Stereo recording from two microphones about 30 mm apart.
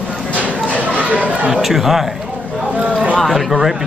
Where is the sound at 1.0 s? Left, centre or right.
Right.